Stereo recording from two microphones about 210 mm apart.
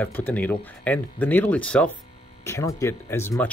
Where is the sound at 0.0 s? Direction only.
10° left (ahead or behind).